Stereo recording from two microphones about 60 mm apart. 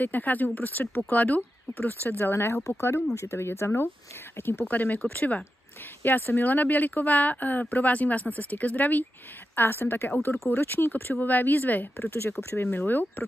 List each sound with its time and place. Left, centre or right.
0.0 s speech: left
4.6 s speech: left